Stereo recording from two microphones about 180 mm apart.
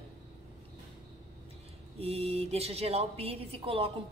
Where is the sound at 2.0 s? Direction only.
35° right (ahead or behind).